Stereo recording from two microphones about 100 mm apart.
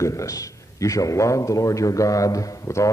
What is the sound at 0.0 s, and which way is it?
A man's voice, 30° left (ahead or behind).